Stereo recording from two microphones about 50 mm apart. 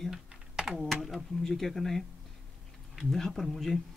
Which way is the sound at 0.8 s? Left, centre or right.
Centre.